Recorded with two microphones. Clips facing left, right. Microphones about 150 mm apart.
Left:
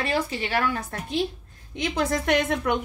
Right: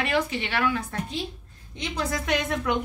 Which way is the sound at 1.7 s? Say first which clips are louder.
Left 4 dB; 55° left (ahead or behind).